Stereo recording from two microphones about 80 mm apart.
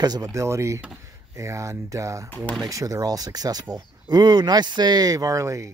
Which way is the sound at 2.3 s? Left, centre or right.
Centre.